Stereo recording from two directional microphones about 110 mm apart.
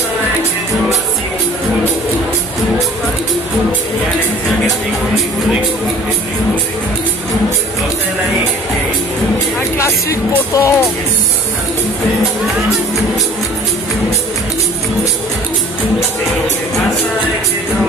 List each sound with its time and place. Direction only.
9.6 s music: 25° left (ahead or behind)